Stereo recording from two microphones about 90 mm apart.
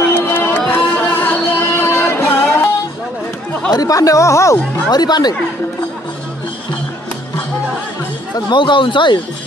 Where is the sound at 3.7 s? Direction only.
40° left (ahead or behind).